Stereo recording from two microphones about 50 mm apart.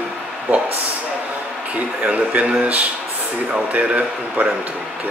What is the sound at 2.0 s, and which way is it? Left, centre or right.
Speech, right.